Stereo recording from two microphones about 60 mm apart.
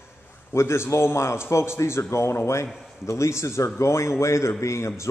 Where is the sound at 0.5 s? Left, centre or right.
Left.